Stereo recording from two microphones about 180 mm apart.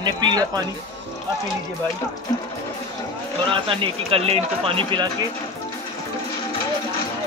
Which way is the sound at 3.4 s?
30° right (ahead or behind).